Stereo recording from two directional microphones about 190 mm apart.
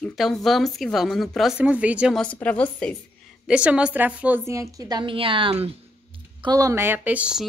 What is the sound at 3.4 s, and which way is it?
A woman's voice, 5° right (ahead or behind).